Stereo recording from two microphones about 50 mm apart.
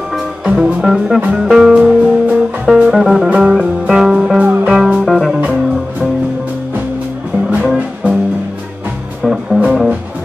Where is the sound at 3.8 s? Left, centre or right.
Centre.